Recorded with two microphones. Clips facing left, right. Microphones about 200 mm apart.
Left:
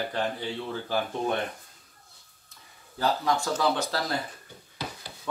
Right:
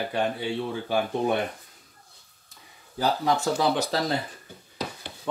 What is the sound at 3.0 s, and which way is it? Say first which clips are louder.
Speech: right 2 dB; 20° right (ahead or behind).